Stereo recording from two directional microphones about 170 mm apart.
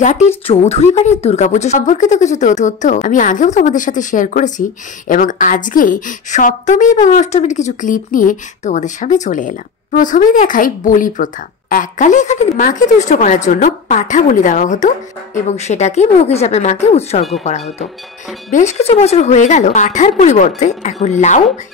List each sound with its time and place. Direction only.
0.5 s a woman's voice: 35° left (ahead or behind)